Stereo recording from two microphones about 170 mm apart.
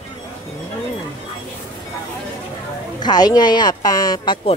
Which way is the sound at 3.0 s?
25° left (ahead or behind).